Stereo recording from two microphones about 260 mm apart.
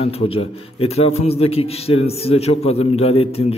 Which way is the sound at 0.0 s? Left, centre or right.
Left.